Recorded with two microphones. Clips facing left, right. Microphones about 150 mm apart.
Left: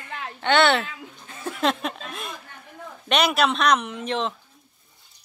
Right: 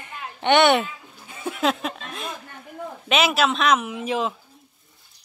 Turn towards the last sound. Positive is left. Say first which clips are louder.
# right 2 dB
turn(degrees=-5)  # may be behind; listen again after turning